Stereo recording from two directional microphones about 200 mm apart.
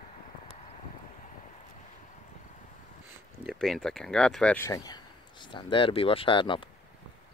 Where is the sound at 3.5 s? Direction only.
Centre (ahead or behind).